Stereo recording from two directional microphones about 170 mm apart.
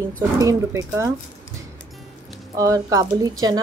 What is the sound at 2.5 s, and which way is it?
Speech, 20° right (ahead or behind).